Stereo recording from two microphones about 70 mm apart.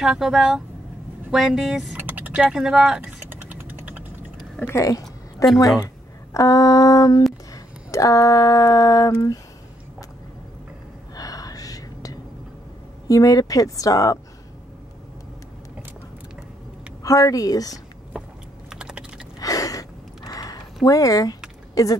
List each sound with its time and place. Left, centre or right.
0.0 s speech: centre
2.0 s typing: right
2.3 s speech: centre
3.0 s typing: right
4.7 s speech: left
5.0 s a sound: centre
6.3 s speech: left
7.5 s a sound: left
11.1 s a sound: left
13.1 s speech: left
17.0 s speech: left
18.7 s typing: centre
19.4 s a sound: left
21.8 s speech: left